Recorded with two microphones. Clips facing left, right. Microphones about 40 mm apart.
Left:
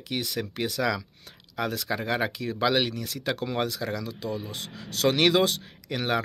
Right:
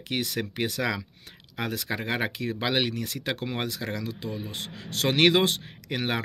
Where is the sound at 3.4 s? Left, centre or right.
Right.